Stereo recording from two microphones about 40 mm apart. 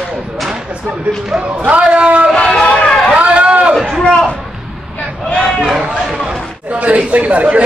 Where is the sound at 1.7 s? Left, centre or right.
Right.